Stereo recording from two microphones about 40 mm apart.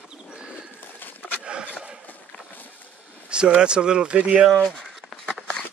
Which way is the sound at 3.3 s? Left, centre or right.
Right.